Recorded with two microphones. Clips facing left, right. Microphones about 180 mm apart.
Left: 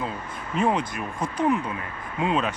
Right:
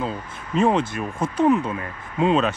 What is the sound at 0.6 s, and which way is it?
Speech, 25° right (ahead or behind).